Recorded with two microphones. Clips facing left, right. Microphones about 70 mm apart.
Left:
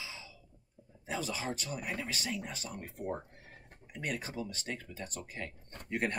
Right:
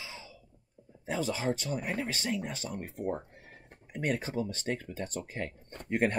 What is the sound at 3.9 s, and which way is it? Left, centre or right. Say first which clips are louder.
Speech: right 6 dB; right.